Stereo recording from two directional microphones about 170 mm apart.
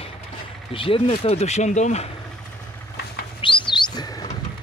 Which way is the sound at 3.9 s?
25° left (ahead or behind).